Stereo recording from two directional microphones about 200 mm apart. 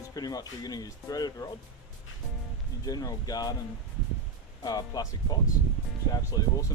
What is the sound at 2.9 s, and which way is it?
Speech, 20° left (ahead or behind).